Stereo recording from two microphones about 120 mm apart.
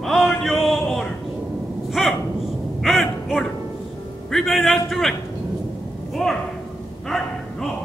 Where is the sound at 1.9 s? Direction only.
Centre (ahead or behind).